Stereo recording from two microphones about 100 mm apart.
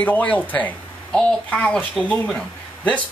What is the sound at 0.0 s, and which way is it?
Speech, 15° left (ahead or behind).